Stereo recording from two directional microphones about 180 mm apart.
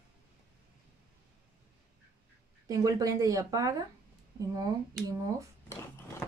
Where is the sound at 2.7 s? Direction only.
20° right (ahead or behind).